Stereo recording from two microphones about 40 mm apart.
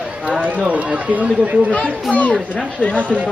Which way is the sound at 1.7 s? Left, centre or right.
Left.